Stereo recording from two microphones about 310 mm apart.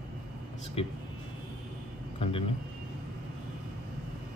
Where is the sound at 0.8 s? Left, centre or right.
Centre.